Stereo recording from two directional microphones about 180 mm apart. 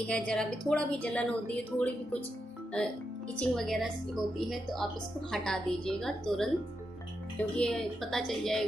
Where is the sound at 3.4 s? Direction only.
Centre (ahead or behind).